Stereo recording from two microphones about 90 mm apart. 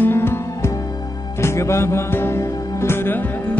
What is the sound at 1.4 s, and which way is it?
Music, 30° left (ahead or behind).